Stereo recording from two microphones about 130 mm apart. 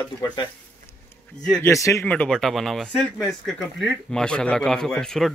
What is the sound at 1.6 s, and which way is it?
Speech, 25° left (ahead or behind).